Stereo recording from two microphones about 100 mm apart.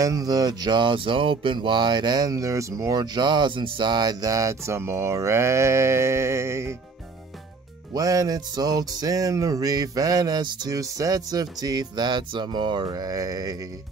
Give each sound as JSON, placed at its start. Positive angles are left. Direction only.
{"t": 0.0, "sound": "speech", "side_deg": -40}
{"t": 7.9, "sound": "speech", "side_deg": -40}